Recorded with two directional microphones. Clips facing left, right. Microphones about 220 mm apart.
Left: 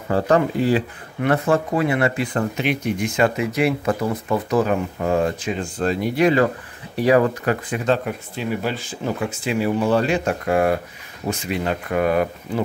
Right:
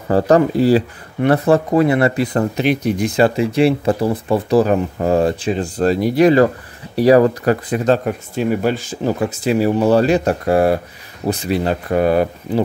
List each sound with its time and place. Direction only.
0.1 s speech: 35° right (ahead or behind)